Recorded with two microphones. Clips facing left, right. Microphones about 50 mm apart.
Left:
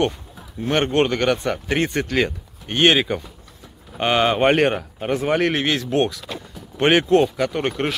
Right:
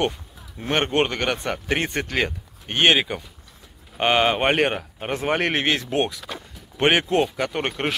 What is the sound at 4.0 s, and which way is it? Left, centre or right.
Speech, centre.